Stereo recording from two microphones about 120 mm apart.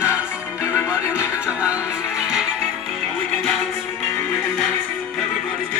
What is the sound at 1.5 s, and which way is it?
Music, 10° right (ahead or behind).